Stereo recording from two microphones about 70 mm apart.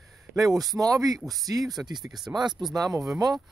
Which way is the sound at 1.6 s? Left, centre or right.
Centre.